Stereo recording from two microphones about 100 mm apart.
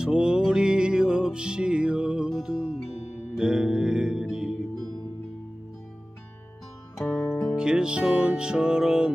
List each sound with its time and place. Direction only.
0.0 s music: 10° right (ahead or behind)
7.1 s music: 20° left (ahead or behind)
7.5 s music: 10° right (ahead or behind)